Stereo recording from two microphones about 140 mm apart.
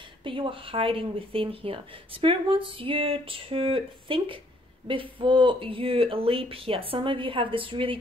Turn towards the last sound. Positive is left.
turn(degrees=-40)  # may be behind; listen again after turning